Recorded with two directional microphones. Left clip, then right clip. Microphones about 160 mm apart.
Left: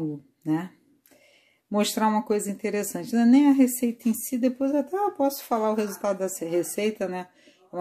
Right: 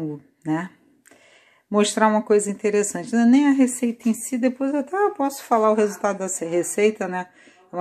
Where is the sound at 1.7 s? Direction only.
10° left (ahead or behind).